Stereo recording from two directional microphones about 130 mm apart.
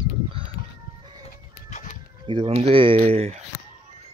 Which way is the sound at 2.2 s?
40° right (ahead or behind).